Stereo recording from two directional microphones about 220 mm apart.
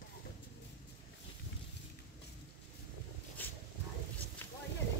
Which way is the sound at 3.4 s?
10° left (ahead or behind).